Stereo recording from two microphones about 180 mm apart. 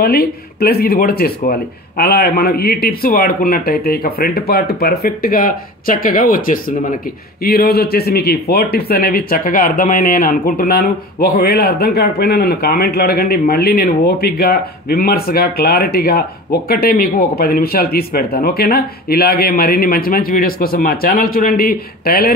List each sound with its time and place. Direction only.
0.0 s speech: 55° left (ahead or behind)